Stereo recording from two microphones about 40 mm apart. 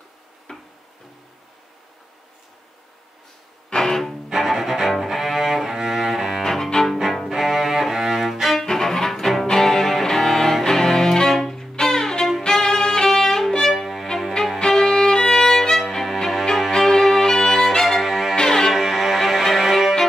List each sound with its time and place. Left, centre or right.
0.5 s tick-tock: centre
3.7 s music: centre
4.3 s cello: centre
6.4 s cello: centre
7.2 s music: centre
8.6 s music: centre
12.4 s violin: centre
14.6 s violin: centre
16.1 s music: centre
16.5 s violin: centre
18.3 s music: centre
18.7 s music: centre
19.5 s violin: centre